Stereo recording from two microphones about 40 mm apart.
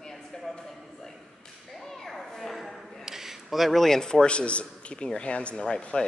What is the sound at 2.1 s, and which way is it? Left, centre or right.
Children playing, centre.